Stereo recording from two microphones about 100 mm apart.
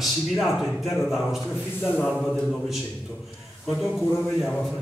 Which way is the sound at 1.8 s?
20° left (ahead or behind).